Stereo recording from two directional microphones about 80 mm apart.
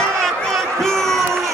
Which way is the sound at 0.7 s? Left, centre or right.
Centre.